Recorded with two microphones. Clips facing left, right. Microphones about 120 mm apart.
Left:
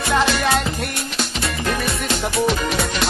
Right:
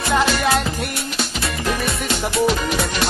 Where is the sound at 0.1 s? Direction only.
Centre (ahead or behind).